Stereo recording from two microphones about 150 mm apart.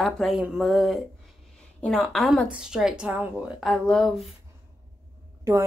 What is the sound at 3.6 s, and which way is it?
Speech, 5° left (ahead or behind).